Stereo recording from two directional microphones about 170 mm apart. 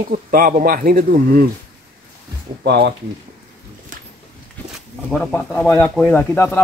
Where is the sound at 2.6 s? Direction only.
75° right (ahead or behind).